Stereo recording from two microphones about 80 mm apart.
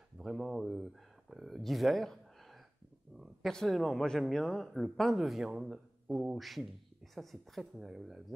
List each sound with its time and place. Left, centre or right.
0.2 s a man's voice: centre